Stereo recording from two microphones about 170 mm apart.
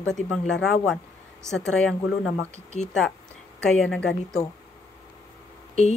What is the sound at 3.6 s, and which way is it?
Speech, 5° left (ahead or behind).